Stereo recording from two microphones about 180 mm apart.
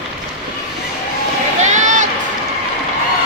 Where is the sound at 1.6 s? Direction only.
40° right (ahead or behind).